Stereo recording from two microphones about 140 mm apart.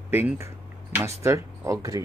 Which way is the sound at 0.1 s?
15° right (ahead or behind).